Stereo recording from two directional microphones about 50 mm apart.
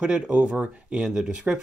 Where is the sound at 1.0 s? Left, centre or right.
Centre.